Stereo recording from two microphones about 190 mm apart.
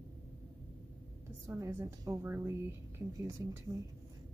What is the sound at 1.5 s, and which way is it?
A woman's voice, 15° right (ahead or behind).